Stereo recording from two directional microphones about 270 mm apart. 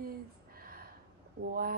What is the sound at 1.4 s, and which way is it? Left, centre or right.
Speech, right.